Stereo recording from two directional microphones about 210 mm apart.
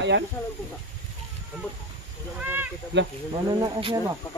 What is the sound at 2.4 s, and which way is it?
Speech, 10° right (ahead or behind).